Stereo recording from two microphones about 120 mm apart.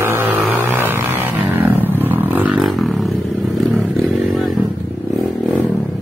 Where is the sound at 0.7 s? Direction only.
15° right (ahead or behind).